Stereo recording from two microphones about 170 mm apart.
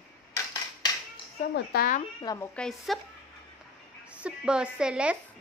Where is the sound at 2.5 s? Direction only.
Centre (ahead or behind).